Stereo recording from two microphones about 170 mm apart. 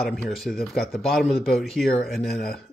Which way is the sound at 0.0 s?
Centre (ahead or behind).